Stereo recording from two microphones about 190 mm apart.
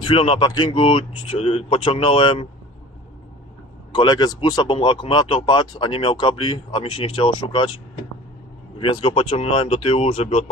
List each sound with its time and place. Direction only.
0.0 s speech: 30° left (ahead or behind)
3.9 s speech: 25° left (ahead or behind)
8.7 s speech: 25° left (ahead or behind)